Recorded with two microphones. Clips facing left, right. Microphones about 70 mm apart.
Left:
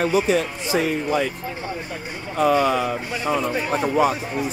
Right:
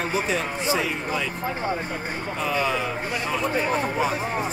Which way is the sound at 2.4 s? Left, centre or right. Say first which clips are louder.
Left 7 dB; left.